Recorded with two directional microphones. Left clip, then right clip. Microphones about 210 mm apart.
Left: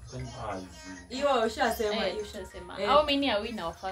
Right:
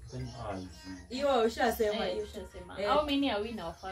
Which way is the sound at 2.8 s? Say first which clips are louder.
Left 5 dB; 50° left (ahead or behind).